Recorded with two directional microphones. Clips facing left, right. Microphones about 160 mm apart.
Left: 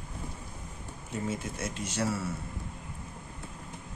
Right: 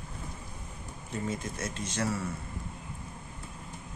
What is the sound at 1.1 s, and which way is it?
Speech, 10° left (ahead or behind).